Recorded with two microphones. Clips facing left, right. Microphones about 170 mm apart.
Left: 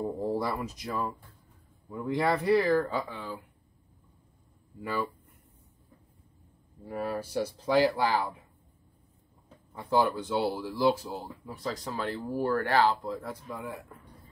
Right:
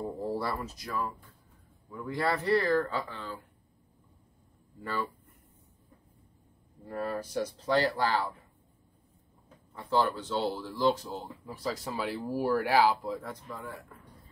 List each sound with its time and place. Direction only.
0.2 s speech: 15° left (ahead or behind)
6.8 s speech: centre (ahead or behind)
9.7 s speech: 15° left (ahead or behind)
13.5 s speech: 20° left (ahead or behind)